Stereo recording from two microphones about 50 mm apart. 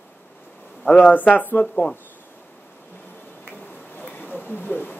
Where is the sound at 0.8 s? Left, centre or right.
Left.